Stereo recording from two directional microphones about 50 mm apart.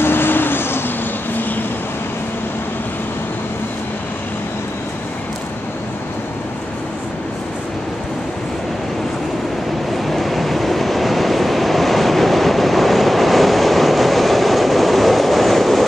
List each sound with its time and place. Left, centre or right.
0.0 s vehicle: left
10.0 s vehicle: centre